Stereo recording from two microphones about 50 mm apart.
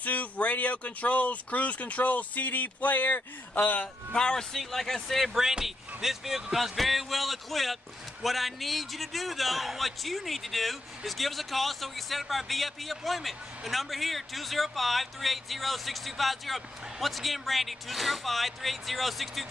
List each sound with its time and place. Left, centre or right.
0.0 s speech: left
4.1 s a man's voice: centre